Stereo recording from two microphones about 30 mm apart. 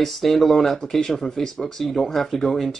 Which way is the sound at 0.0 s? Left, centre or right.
Centre.